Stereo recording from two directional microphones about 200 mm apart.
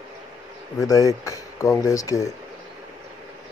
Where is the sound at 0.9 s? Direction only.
15° left (ahead or behind).